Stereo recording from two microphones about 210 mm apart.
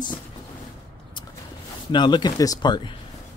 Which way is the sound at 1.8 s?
20° left (ahead or behind).